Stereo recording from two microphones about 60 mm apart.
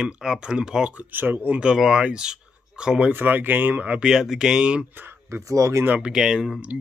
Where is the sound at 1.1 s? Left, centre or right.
Right.